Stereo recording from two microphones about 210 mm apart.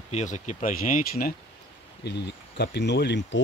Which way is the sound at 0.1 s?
35° left (ahead or behind).